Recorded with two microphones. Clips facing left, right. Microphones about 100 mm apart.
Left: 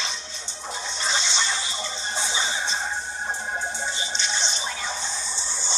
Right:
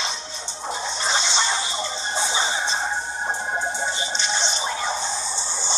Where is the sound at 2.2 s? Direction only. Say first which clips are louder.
Right 4 dB; 30° right (ahead or behind).